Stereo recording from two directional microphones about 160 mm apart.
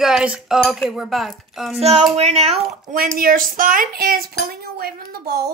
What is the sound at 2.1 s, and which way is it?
Speech, 40° right (ahead or behind).